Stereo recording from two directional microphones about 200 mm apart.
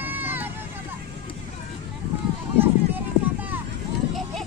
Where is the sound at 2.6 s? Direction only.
10° right (ahead or behind).